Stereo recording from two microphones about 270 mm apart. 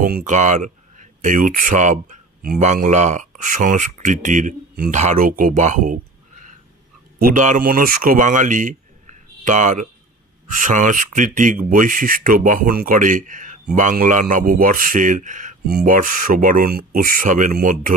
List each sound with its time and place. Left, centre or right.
0.0 s a man's voice: right
7.2 s a man's voice: right